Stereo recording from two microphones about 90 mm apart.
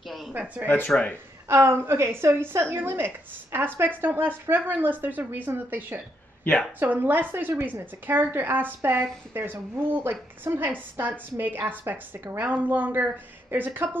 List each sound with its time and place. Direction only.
0.0 s a sound: centre (ahead or behind)
0.3 s speech: 20° right (ahead or behind)
0.7 s speech: 15° left (ahead or behind)
1.5 s a woman's voice: 30° right (ahead or behind)
6.5 s a woman's voice: 20° left (ahead or behind)
6.8 s a woman's voice: 20° right (ahead or behind)